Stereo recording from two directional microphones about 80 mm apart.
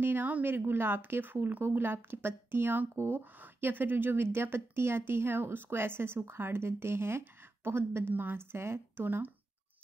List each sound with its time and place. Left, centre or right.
0.0 s a woman's voice: right